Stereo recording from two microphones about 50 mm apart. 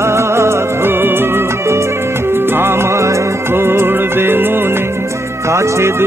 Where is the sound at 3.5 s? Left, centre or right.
Right.